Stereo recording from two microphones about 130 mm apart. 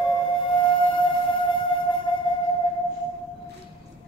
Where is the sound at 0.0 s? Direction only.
40° left (ahead or behind).